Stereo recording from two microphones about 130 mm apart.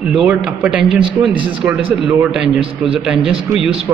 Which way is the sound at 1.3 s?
40° right (ahead or behind).